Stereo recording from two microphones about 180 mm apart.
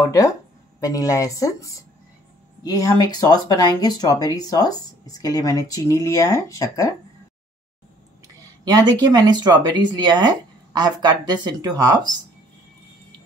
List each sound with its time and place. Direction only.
0.0 s speech: 20° left (ahead or behind)
8.6 s speech: 20° right (ahead or behind)